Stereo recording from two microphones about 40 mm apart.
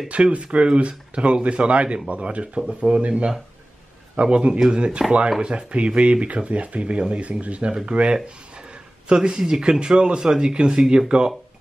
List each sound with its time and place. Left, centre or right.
0.1 s speech: right